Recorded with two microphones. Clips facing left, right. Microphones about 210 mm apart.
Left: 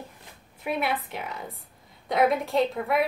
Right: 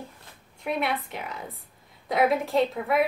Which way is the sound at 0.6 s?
Centre (ahead or behind).